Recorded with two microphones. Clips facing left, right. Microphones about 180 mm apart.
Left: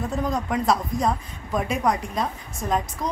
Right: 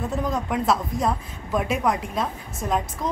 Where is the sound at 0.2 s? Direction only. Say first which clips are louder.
Left 2 dB; centre (ahead or behind).